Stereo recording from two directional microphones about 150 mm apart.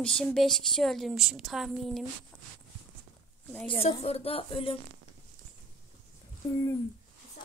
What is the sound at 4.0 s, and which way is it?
Speech, 40° left (ahead or behind).